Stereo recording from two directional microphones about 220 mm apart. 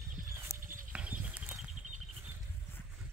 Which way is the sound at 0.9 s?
5° right (ahead or behind).